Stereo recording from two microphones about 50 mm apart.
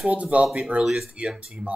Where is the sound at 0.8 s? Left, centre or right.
Centre.